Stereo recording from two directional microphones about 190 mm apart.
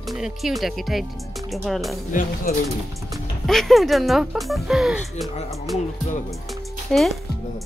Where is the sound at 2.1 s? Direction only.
45° left (ahead or behind).